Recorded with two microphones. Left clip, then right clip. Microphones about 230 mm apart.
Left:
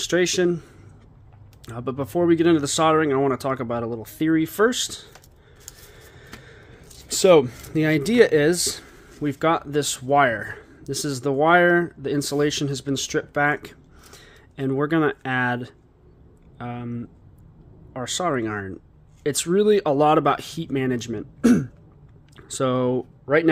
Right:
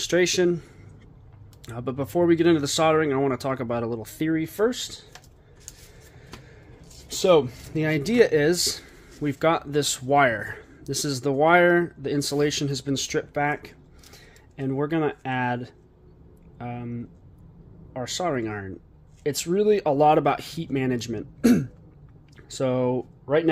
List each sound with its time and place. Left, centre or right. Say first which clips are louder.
0.0 s speech: left 1 dB; centre
1.7 s speech: left 1 dB; centre
4.3 s speech: left 5 dB; left
6.2 s music: left 2 dB; left
7.1 s speech: left 4 dB; left